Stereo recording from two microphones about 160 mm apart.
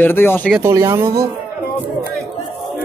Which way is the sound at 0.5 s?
15° right (ahead or behind).